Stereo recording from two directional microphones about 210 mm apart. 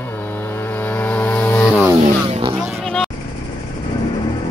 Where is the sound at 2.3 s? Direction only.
25° right (ahead or behind).